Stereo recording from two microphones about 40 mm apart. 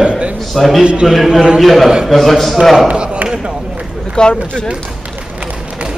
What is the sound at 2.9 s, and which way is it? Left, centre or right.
Basketball bounce, right.